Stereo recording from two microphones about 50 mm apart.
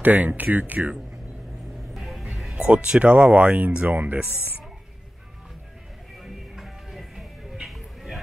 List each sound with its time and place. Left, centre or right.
0.0 s speech: right
2.0 s music: centre
2.5 s speech: right
6.1 s music: centre